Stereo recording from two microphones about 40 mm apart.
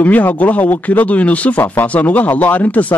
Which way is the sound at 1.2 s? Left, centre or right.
Left.